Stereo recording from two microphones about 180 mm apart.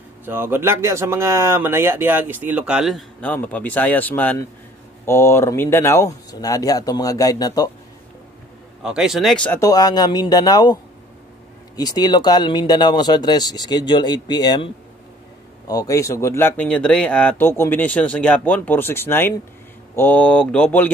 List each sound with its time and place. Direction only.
0.2 s speech: 10° right (ahead or behind)
3.2 s speech: 10° left (ahead or behind)
8.8 s speech: 5° right (ahead or behind)
9.6 s speech: 20° left (ahead or behind)